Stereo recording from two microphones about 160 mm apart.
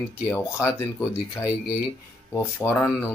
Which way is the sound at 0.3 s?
15° left (ahead or behind).